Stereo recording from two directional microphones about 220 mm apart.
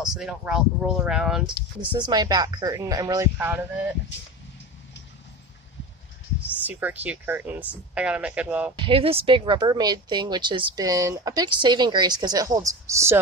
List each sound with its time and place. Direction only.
0.0 s speech: centre (ahead or behind)
1.8 s speech: 20° right (ahead or behind)
6.4 s speech: 5° right (ahead or behind)
8.7 s speech: 25° right (ahead or behind)